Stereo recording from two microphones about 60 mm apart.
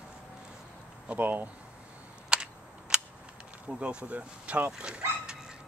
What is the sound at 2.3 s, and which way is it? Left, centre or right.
Cap gun, centre.